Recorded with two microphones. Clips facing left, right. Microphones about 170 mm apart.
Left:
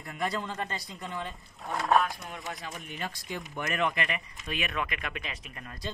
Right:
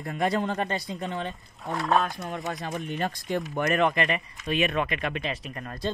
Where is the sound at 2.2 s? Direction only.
40° right (ahead or behind).